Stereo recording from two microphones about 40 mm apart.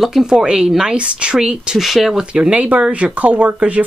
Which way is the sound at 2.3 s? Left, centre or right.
Right.